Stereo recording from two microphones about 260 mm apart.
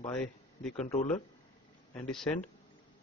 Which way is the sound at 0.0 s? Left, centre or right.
Centre.